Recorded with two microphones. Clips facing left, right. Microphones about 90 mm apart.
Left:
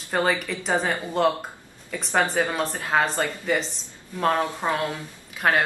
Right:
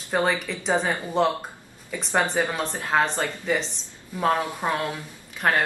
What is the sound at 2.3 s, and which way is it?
Speech, centre (ahead or behind).